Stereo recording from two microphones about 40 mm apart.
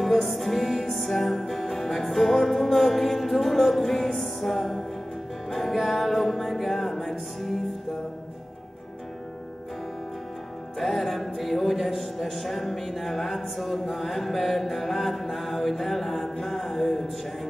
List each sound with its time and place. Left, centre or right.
0.0 s music: centre
10.8 s music: centre